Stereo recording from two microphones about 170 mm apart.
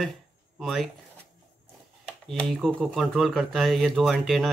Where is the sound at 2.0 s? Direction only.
Centre (ahead or behind).